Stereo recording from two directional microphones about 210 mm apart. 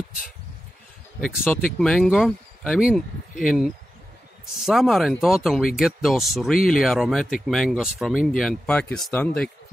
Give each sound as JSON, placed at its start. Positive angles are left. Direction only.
{"t": 1.2, "sound": "speech", "side_deg": 0}